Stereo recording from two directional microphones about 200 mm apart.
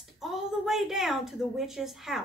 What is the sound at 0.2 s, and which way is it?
A woman's voice, centre (ahead or behind).